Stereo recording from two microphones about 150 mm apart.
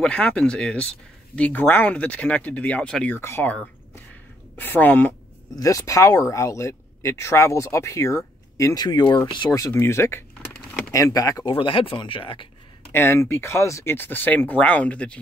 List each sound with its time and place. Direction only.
0.0 s speech: 5° left (ahead or behind)
5.6 s speech: 20° left (ahead or behind)
11.5 s speech: 35° left (ahead or behind)
12.9 s speech: 15° left (ahead or behind)